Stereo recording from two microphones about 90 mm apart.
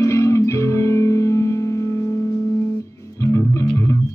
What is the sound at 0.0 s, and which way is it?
Music, 30° left (ahead or behind).